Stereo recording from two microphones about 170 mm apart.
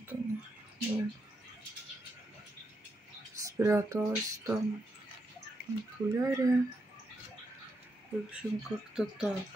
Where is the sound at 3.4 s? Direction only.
15° right (ahead or behind).